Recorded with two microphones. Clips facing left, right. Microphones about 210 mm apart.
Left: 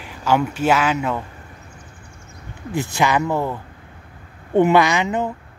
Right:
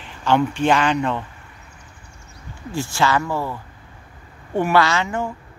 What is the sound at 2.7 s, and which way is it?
Speech, 20° left (ahead or behind).